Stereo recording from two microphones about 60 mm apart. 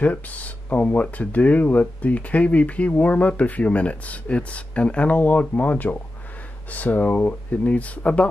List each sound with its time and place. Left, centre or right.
0.0 s speech: left